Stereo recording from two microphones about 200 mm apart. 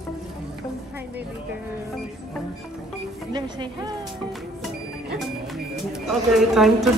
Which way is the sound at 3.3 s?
20° right (ahead or behind).